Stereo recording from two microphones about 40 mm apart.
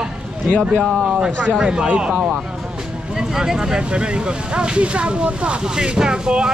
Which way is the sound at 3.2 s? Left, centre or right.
Centre.